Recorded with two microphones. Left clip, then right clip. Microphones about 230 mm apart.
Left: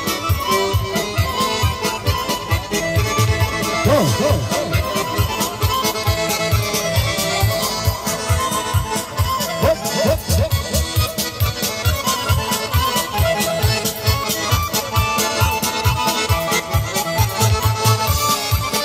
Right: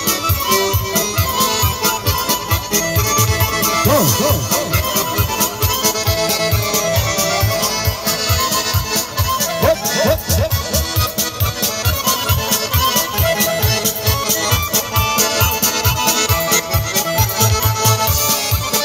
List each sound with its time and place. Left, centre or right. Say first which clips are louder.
0.5 s music: right 1 dB; right
8.9 s music: right 2 dB; centre
12.1 s music: right 2 dB; right